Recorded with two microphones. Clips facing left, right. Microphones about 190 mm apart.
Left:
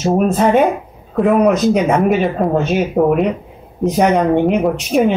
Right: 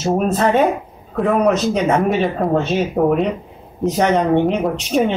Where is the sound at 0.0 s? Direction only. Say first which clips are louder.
Left 3 dB; 10° left (ahead or behind).